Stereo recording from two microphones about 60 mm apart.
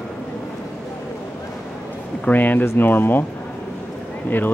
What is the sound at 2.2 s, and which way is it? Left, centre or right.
Speech, left.